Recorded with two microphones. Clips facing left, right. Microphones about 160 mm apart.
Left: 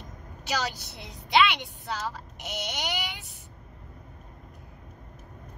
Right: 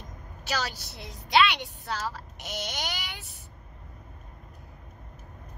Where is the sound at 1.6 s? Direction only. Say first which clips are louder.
Even; 15° left (ahead or behind).